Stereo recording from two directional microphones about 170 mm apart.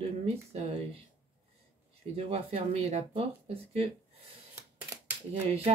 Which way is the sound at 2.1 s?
35° right (ahead or behind).